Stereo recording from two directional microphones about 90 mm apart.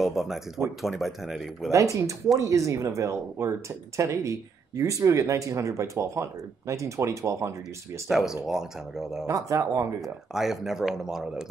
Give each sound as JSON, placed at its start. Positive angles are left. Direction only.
{"t": 0.0, "sound": "speech", "side_deg": -5}
{"t": 1.7, "sound": "speech", "side_deg": -35}
{"t": 8.1, "sound": "speech", "side_deg": -5}
{"t": 9.2, "sound": "speech", "side_deg": -35}
{"t": 10.0, "sound": "speech", "side_deg": -5}